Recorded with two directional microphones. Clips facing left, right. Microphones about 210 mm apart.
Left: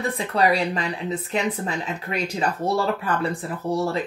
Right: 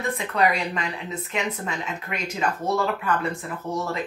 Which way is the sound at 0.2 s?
35° left (ahead or behind).